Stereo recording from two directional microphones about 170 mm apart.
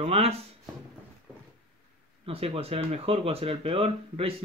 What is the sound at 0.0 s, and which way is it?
Speech, 35° right (ahead or behind).